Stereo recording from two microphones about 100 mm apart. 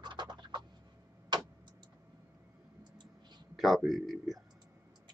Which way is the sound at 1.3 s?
45° right (ahead or behind).